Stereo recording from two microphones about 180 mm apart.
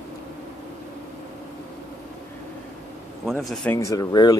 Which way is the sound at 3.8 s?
20° left (ahead or behind).